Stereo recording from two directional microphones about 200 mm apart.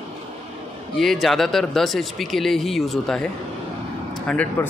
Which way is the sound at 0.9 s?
Centre (ahead or behind).